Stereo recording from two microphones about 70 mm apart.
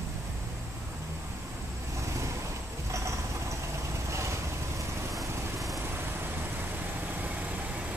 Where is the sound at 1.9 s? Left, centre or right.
Right.